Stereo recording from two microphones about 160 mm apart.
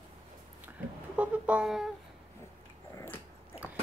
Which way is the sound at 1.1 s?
10° right (ahead or behind).